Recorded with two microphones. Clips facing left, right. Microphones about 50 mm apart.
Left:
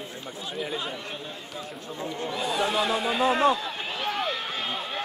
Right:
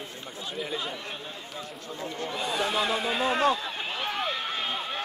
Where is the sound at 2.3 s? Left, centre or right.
Centre.